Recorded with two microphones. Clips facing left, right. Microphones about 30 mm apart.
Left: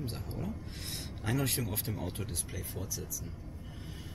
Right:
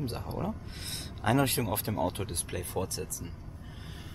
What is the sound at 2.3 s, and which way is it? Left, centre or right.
Speech, right.